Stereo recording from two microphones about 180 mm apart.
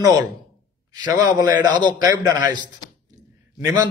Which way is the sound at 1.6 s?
25° right (ahead or behind).